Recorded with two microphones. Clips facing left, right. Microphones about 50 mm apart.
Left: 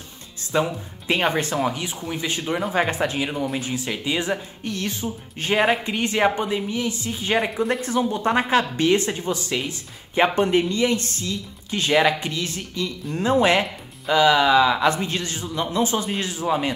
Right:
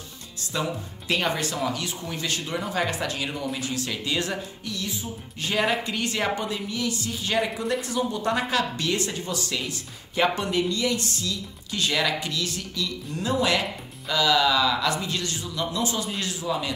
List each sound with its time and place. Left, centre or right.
0.4 s speech: left
4.6 s speech: left
5.4 s speech: left